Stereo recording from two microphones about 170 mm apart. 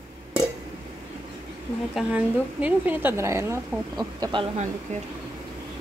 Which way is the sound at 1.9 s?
5° right (ahead or behind).